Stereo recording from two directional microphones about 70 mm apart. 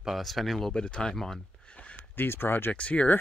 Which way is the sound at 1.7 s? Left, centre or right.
Centre.